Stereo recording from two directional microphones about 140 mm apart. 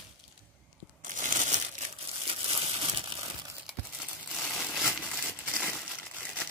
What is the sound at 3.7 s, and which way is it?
Crumpling, 5° left (ahead or behind).